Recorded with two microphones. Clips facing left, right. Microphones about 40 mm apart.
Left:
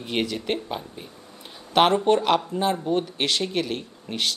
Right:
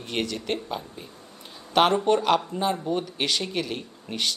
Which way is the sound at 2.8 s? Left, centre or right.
Centre.